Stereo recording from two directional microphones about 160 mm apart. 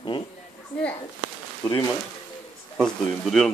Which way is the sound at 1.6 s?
20° left (ahead or behind).